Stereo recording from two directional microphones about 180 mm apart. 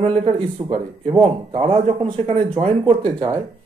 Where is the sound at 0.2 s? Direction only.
30° right (ahead or behind).